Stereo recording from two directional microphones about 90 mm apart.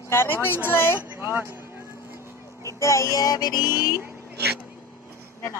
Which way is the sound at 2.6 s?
35° left (ahead or behind).